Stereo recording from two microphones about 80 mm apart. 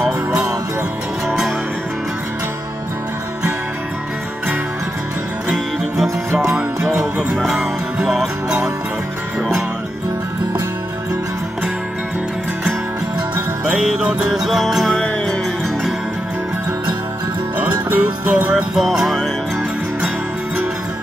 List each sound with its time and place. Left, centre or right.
7.2 s music: centre
13.7 s music: centre
14.3 s music: centre
17.6 s music: right
18.3 s music: centre
18.8 s music: centre